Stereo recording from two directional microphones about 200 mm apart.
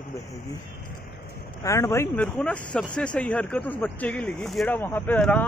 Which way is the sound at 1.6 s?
15° left (ahead or behind).